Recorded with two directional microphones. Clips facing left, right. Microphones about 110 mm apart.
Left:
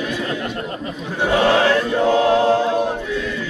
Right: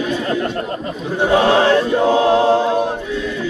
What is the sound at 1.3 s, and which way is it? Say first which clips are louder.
Chant: right 2 dB; 25° right (ahead or behind).